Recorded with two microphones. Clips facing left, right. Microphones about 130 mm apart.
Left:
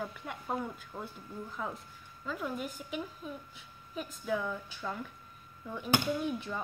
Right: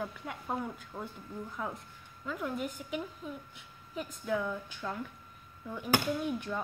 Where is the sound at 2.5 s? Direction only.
20° right (ahead or behind).